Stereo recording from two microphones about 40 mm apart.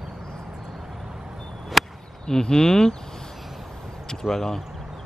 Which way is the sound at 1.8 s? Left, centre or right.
Centre.